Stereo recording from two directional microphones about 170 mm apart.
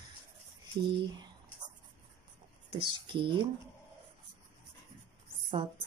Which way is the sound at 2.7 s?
30° right (ahead or behind).